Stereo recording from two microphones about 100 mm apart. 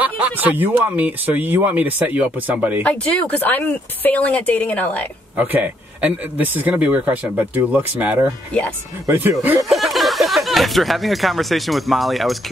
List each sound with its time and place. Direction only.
0.0 s speech: 15° right (ahead or behind)
2.8 s speech: 15° left (ahead or behind)
5.4 s speech: 15° right (ahead or behind)
9.7 s speech: centre (ahead or behind)